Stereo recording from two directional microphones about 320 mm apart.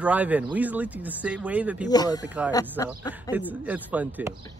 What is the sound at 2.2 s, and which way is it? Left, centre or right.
Speech, centre.